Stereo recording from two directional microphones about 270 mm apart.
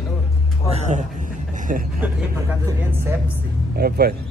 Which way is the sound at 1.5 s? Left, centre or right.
Right.